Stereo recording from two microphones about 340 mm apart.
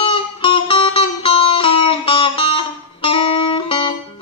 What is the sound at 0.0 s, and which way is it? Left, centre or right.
Music, centre.